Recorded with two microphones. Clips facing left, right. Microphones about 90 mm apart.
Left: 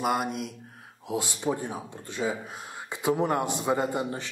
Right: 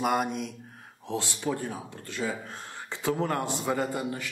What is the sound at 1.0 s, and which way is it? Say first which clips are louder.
Speech: left 2 dB; 15° left (ahead or behind).